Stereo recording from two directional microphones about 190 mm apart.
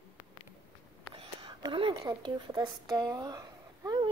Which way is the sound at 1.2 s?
25° right (ahead or behind).